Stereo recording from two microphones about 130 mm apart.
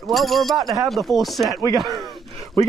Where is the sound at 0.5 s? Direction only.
30° right (ahead or behind).